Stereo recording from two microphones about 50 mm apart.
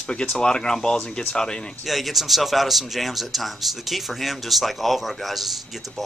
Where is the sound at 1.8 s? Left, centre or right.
Centre.